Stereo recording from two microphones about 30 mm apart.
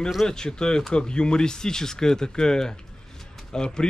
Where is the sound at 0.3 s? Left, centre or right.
Left.